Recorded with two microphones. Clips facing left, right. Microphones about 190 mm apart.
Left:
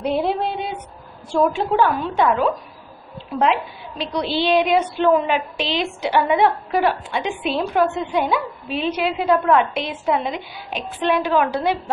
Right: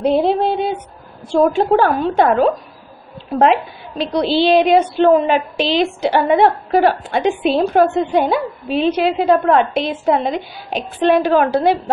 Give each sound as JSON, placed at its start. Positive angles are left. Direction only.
{"t": 0.0, "sound": "a sound", "side_deg": -30}
{"t": 1.3, "sound": "a woman's voice", "side_deg": -35}
{"t": 4.0, "sound": "a woman's voice", "side_deg": -35}